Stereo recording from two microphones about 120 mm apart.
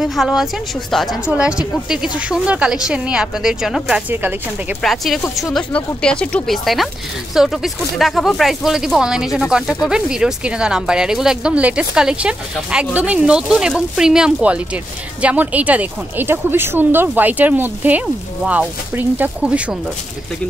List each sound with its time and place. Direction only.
0.0 s speech: centre (ahead or behind)
4.1 s speech: 15° right (ahead or behind)
4.8 s speech: centre (ahead or behind)